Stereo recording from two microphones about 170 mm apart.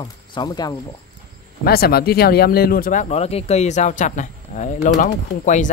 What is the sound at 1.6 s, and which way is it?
A man's voice, 65° left (ahead or behind).